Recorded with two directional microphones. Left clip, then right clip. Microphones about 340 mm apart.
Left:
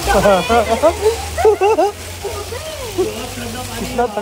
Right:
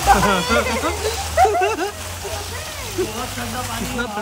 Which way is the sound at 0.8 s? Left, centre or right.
Left.